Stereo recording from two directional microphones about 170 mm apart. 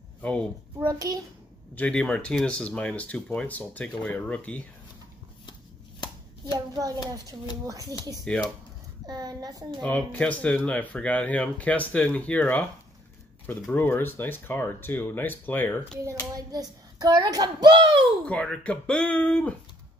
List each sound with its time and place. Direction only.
0.2 s a woman's voice: 5° left (ahead or behind)
0.8 s a child's voice: 20° right (ahead or behind)
1.8 s speech: 5° left (ahead or behind)
6.4 s a child's voice: 25° right (ahead or behind)
8.3 s speech: 5° left (ahead or behind)
9.0 s a child's voice: 25° right (ahead or behind)
9.8 s speech: 5° left (ahead or behind)
16.3 s a child's voice: 20° right (ahead or behind)
18.2 s speech: 5° left (ahead or behind)